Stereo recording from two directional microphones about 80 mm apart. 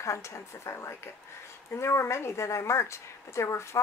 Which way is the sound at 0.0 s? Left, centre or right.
Left.